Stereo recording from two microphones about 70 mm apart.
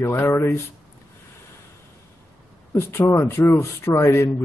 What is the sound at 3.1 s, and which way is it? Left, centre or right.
Speech, left.